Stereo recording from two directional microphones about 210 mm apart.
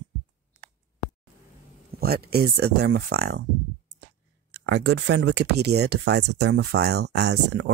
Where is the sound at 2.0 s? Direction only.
45° right (ahead or behind).